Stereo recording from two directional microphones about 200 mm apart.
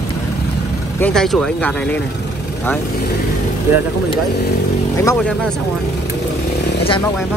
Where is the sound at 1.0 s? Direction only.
Centre (ahead or behind).